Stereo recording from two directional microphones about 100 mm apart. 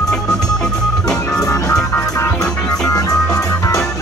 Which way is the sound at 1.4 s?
35° left (ahead or behind).